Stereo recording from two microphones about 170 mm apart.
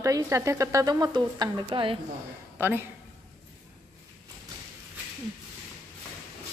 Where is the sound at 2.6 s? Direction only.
15° right (ahead or behind).